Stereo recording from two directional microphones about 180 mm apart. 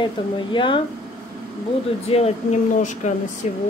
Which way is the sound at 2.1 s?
40° left (ahead or behind).